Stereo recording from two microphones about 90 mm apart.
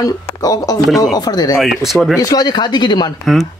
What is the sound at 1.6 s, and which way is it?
Speech, centre (ahead or behind).